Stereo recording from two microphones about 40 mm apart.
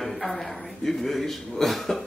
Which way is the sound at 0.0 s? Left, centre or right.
Centre.